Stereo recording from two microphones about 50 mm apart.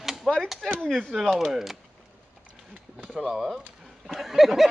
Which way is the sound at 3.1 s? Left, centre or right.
Centre.